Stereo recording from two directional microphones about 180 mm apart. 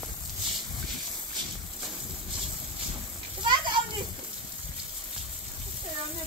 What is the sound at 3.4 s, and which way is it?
Children playing, 25° right (ahead or behind).